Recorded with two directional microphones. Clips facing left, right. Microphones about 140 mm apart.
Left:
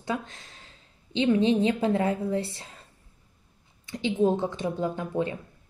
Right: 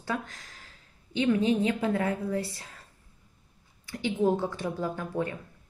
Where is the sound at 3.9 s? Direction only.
20° left (ahead or behind).